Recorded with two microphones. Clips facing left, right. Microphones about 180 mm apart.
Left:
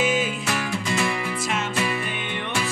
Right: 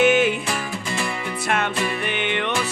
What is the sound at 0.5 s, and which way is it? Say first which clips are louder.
Music: left 1 dB; centre (ahead or behind).